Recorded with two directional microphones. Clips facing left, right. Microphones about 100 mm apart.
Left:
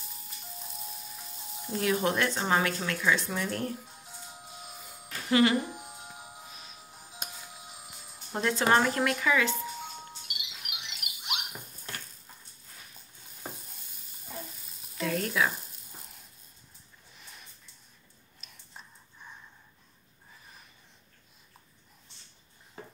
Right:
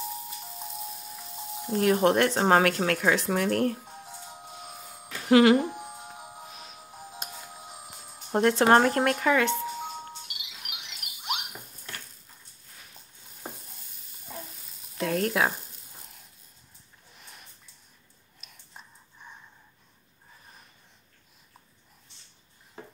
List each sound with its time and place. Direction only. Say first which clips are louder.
1.7 s speech: right 6 dB; 45° right (ahead or behind)
5.3 s speech: right 6 dB; 80° right
5.7 s music: right 4 dB; 50° right (ahead or behind)
6.5 s music: right 4 dB; 65° right (ahead or behind)
8.3 s speech: right 6 dB; 55° right (ahead or behind)
10.2 s rodents: even; 40° right (ahead or behind)
15.0 s frying: right 3 dB; 50° right (ahead or behind)